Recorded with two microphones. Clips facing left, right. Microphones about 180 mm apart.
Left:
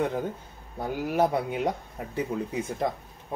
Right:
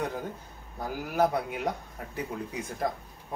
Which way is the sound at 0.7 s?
25° left (ahead or behind).